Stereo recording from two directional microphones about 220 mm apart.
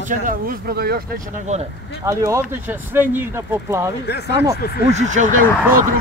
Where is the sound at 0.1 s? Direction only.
40° right (ahead or behind).